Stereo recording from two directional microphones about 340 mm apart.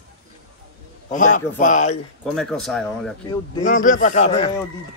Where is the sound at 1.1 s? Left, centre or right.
Left.